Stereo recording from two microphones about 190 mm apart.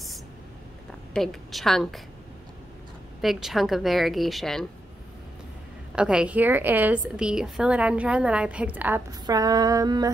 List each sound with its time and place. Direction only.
1.1 s a woman's voice: centre (ahead or behind)
3.2 s a woman's voice: centre (ahead or behind)
5.9 s a woman's voice: 5° right (ahead or behind)
9.2 s female singing: 20° right (ahead or behind)